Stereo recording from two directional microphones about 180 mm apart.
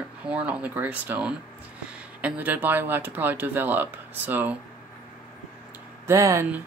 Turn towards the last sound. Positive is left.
turn(degrees=-15)  # may be behind; listen again after turning